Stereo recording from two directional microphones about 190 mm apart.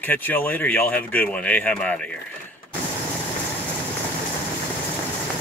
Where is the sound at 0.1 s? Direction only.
10° left (ahead or behind).